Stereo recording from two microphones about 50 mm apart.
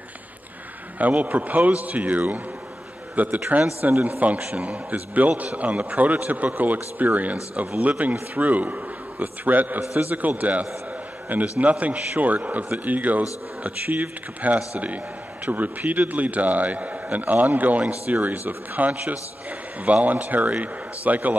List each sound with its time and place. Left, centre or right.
0.9 s a man's voice: right
4.4 s a man's voice: right